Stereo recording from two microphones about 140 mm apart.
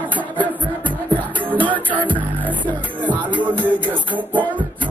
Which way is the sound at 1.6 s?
10° right (ahead or behind).